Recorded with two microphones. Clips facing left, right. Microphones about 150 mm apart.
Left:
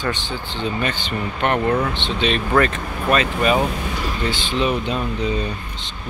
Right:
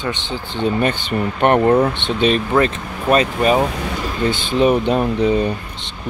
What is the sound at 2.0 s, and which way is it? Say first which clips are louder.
Speech: right 5 dB; 55° right (ahead or behind).